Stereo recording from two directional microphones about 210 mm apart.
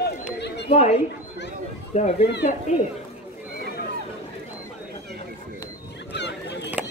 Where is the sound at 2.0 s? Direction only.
30° left (ahead or behind).